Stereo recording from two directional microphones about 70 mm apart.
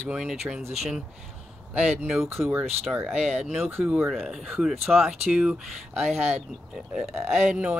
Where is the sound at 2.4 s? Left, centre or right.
Centre; by 3.9 s right.